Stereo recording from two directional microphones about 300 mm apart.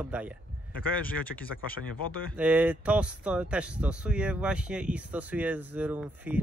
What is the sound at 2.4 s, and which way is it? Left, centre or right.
Speech, centre.